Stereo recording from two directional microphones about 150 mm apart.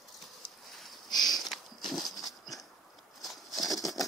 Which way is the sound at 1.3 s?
Centre (ahead or behind).